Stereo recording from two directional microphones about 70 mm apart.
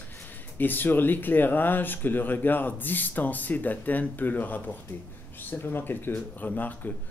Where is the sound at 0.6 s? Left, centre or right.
Left.